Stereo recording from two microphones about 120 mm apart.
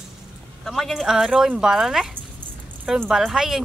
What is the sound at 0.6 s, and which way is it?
Speech, centre (ahead or behind).